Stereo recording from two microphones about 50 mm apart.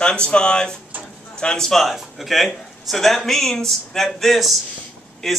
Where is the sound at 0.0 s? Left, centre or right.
Centre.